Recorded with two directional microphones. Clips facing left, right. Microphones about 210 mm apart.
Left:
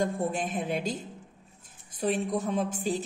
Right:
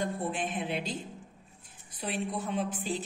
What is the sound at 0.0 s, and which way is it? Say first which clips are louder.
A woman's voice: left 4 dB; 45° left (ahead or behind).